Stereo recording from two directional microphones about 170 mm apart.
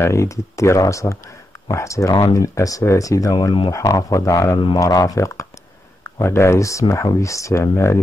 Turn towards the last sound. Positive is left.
turn(degrees=15)  # may be behind; listen again after turning